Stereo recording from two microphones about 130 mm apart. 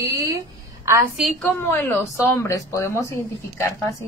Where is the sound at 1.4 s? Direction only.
15° left (ahead or behind).